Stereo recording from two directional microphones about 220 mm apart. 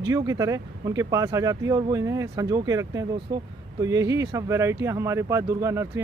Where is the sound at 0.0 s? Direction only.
15° right (ahead or behind).